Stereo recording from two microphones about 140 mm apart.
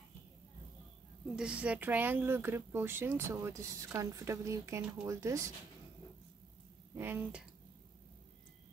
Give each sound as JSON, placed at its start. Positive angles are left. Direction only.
{"t": 1.3, "sound": "speech", "side_deg": -5}
{"t": 7.0, "sound": "speech", "side_deg": -15}